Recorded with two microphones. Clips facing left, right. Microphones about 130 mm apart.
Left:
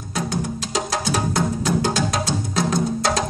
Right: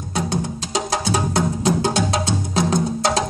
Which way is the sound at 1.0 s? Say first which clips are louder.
Right 1 dB; 25° right (ahead or behind).